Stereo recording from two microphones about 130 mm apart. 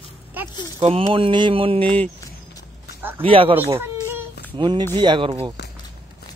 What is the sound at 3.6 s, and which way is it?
Speech, 20° right (ahead or behind).